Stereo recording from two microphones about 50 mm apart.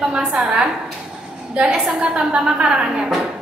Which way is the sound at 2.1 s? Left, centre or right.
Right.